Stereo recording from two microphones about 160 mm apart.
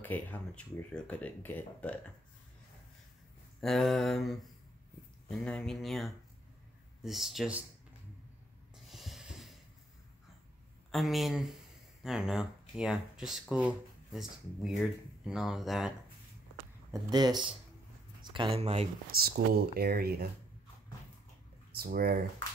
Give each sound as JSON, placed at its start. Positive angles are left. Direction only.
{"t": 0.0, "sound": "speech", "side_deg": 10}
{"t": 3.6, "sound": "speech", "side_deg": 0}
{"t": 8.7, "sound": "snort", "side_deg": 0}
{"t": 10.9, "sound": "speech", "side_deg": 0}
{"t": 16.9, "sound": "speech", "side_deg": -25}
{"t": 19.1, "sound": "speech", "side_deg": -75}
{"t": 21.7, "sound": "speech", "side_deg": -70}